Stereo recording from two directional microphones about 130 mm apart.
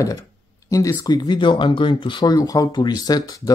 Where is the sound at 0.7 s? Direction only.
25° left (ahead or behind).